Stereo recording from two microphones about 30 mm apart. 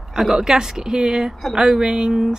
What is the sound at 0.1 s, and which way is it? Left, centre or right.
Speech, centre.